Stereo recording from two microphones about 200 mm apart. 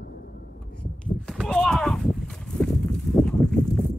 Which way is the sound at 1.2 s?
5° left (ahead or behind).